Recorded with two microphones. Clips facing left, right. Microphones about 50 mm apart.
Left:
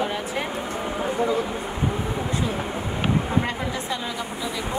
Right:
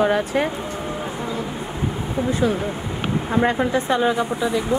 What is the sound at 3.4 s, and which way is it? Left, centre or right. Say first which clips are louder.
Speech: right 8 dB; right.